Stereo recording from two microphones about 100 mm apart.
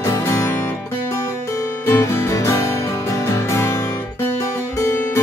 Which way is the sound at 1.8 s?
25° left (ahead or behind).